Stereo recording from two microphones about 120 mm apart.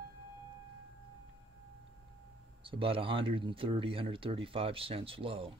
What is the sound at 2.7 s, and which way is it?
Speech, 50° right (ahead or behind).